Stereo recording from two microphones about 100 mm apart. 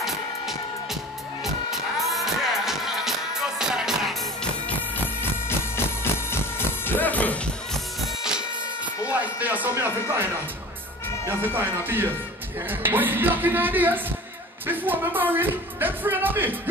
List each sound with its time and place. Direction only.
1.4 s music: centre (ahead or behind)
4.6 s music: 20° left (ahead or behind)
7.7 s music: 5° right (ahead or behind)
9.1 s a sound: 15° right (ahead or behind)
11.2 s speech: 20° right (ahead or behind)